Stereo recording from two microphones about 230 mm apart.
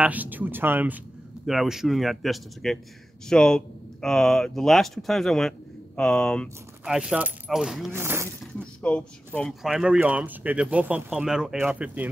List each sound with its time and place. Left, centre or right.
0.0 s speech: centre
8.5 s speech: centre